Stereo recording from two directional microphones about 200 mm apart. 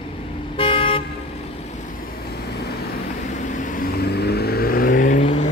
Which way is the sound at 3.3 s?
40° left (ahead or behind).